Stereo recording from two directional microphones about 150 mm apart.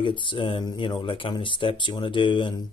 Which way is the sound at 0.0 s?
35° left (ahead or behind).